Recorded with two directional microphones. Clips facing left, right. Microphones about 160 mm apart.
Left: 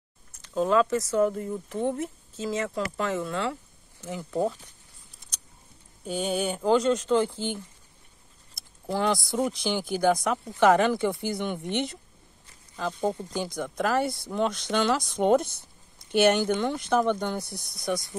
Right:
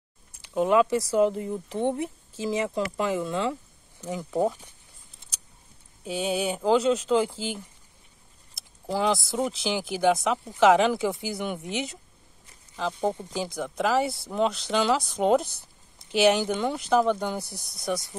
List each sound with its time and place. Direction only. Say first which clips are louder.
0.4 s speech: right 2 dB; 15° right (ahead or behind)
6.0 s speech: right 1 dB; 5° right (ahead or behind)
8.9 s speech: right 1 dB; 5° right (ahead or behind)
13.3 s speech: even; 5° right (ahead or behind)